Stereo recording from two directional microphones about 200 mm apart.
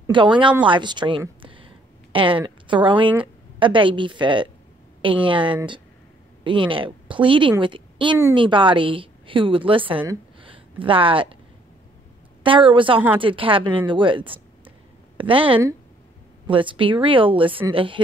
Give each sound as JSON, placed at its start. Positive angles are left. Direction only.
{"t": 0.0, "sound": "a woman's voice", "side_deg": -25}
{"t": 12.4, "sound": "a woman's voice", "side_deg": -25}